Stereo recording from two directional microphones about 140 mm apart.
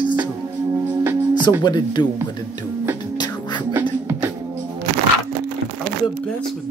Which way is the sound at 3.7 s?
15° right (ahead or behind).